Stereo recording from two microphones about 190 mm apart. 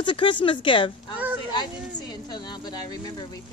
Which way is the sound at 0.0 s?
25° left (ahead or behind).